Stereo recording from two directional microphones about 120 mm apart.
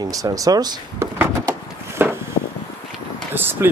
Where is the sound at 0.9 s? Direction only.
20° right (ahead or behind).